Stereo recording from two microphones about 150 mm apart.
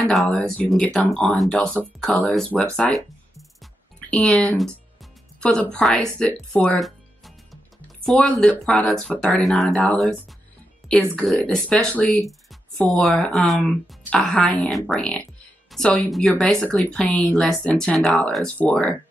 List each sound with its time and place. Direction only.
0.1 s speech: centre (ahead or behind)
4.1 s speech: 5° left (ahead or behind)
6.5 s music: 5° left (ahead or behind)
8.0 s speech: centre (ahead or behind)
10.8 s music: centre (ahead or behind)
11.1 s speech: 5° left (ahead or behind)